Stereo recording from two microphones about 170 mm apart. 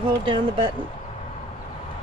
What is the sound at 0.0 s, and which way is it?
Speech, 30° right (ahead or behind).